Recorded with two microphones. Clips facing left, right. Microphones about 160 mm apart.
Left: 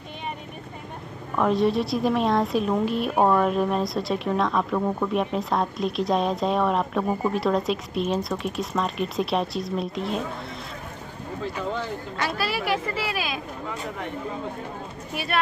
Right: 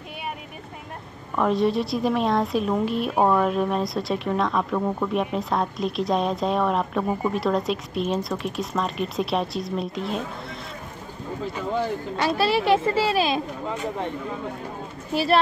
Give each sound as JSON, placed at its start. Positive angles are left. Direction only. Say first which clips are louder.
{"t": 1.3, "sound": "speech", "louder": "even", "side_deg": 0}
{"t": 12.2, "sound": "speech", "louder": "right 6 dB", "side_deg": -25}
{"t": 15.1, "sound": "speech", "louder": "right 6 dB", "side_deg": -30}